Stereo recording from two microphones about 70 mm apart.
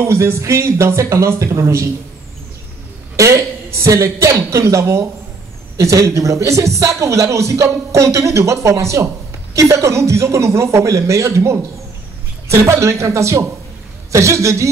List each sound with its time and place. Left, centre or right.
0.0 s a man's voice: right
3.2 s a man's voice: right